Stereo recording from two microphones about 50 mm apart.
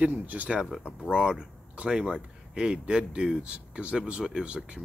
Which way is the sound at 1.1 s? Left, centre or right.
Centre.